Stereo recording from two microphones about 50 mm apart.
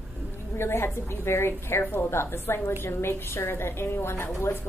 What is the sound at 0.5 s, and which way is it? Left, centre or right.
A woman's voice, left.